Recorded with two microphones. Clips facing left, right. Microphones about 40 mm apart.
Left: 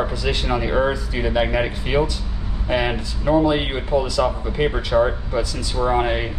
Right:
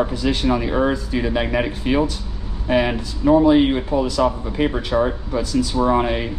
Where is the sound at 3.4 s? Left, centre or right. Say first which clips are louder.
Right 6 dB; left.